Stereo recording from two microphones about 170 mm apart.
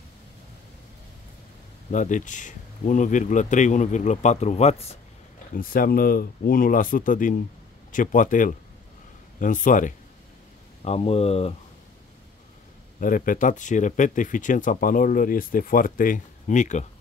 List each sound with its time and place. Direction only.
1.9 s speech: 50° left (ahead or behind)
5.6 s speech: 55° left (ahead or behind)
10.8 s speech: 35° left (ahead or behind)
13.0 s speech: 55° left (ahead or behind)